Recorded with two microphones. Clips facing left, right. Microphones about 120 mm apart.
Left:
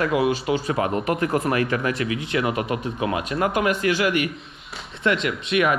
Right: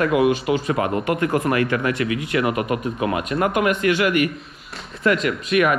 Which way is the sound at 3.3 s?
55° right (ahead or behind).